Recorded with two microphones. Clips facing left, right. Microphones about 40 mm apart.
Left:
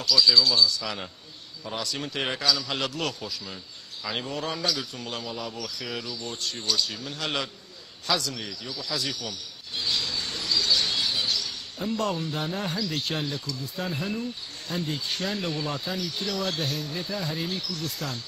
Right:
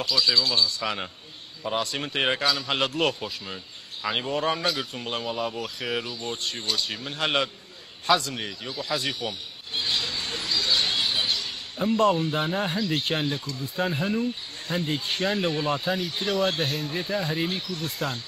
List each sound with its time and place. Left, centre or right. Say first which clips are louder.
0.0 s speech: left 2 dB; right